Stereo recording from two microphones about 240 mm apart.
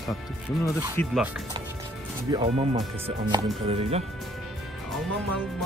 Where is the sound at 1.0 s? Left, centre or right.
Centre.